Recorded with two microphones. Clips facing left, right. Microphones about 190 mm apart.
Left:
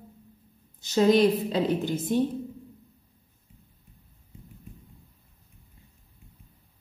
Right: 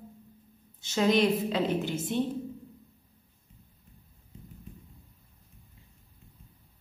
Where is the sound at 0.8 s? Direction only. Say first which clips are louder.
Left 5 dB; 35° left (ahead or behind).